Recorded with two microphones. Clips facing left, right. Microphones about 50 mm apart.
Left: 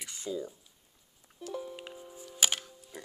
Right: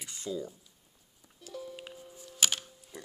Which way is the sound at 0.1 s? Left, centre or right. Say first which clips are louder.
Even; left.